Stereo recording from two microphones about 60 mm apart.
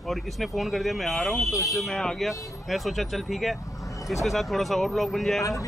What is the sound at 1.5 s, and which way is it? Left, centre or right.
Speech, left.